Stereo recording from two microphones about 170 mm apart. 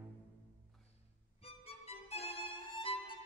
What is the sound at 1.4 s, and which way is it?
Violin, 35° left (ahead or behind).